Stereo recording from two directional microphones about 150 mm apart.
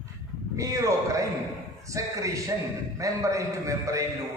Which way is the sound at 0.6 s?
20° right (ahead or behind).